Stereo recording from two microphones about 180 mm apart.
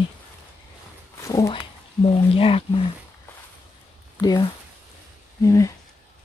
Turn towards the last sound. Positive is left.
turn(degrees=15)  # may be behind; listen again after turning